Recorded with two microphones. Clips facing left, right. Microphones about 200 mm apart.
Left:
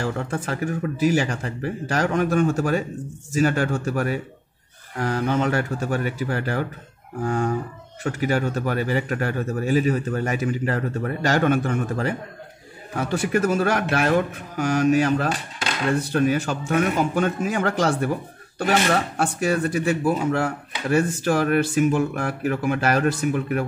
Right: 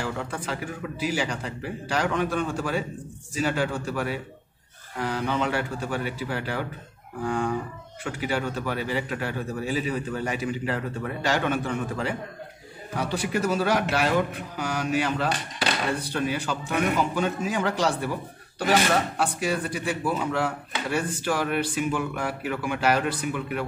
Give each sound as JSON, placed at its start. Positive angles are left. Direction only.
{"t": 0.0, "sound": "speech", "side_deg": 45}
{"t": 19.1, "sound": "speech", "side_deg": 45}